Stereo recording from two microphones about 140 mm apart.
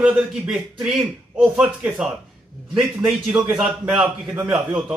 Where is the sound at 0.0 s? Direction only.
5° right (ahead or behind).